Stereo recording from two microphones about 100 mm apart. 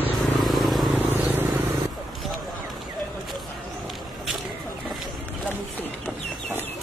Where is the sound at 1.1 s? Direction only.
20° right (ahead or behind).